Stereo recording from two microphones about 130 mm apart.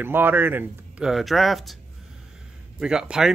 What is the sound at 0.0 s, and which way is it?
Speech, 15° right (ahead or behind).